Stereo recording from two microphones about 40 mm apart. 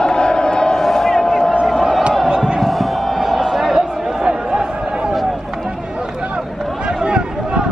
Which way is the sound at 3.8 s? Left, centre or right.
Centre.